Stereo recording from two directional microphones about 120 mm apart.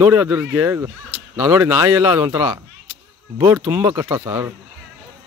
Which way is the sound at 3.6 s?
30° right (ahead or behind).